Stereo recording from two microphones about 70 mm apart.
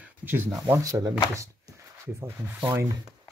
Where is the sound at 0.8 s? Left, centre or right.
Right.